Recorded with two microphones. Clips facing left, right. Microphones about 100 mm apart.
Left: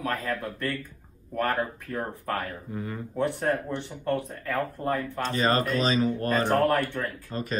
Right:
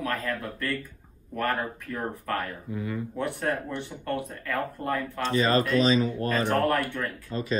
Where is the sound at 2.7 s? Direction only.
40° left (ahead or behind).